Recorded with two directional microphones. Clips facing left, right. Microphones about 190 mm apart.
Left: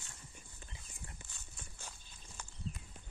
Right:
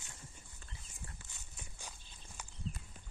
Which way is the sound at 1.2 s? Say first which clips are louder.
Even; 15° right (ahead or behind).